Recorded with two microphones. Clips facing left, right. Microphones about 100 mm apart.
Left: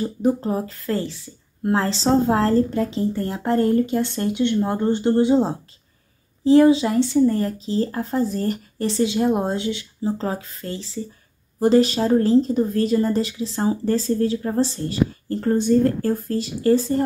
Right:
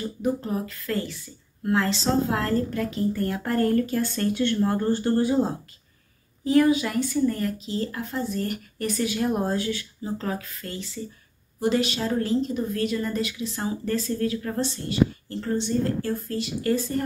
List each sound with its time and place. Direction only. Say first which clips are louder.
0.0 s speech: left 6 dB; 35° left (ahead or behind)